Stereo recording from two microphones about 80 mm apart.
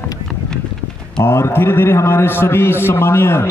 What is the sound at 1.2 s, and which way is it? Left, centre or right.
A man's voice, left.